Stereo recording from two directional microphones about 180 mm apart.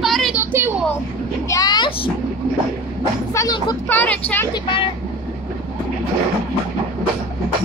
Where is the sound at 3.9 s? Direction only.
10° left (ahead or behind).